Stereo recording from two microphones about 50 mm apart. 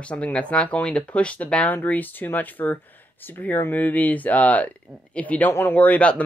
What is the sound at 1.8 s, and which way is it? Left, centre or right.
Speech, left.